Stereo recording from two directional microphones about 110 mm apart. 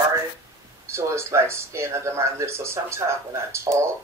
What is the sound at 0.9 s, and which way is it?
Speech, 25° right (ahead or behind).